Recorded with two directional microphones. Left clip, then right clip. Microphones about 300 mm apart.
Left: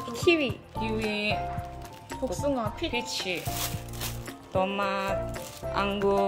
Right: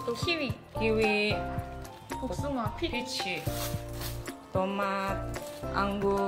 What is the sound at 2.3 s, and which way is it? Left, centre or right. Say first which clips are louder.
Speech: left 5 dB; left.